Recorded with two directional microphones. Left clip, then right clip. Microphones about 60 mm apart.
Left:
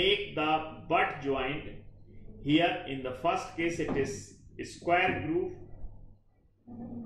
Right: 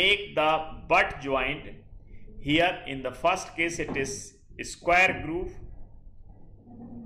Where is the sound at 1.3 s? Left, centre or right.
Right.